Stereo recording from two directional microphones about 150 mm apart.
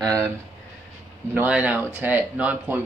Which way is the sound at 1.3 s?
10° right (ahead or behind).